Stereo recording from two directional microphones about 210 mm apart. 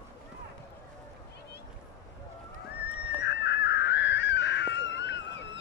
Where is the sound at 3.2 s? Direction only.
55° left (ahead or behind).